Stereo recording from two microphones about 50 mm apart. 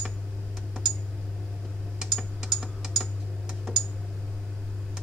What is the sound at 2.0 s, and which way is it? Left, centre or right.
Typing, centre.